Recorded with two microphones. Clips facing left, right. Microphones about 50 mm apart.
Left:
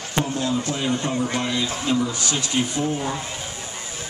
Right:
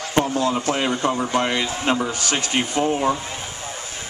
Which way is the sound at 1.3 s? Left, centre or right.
Right.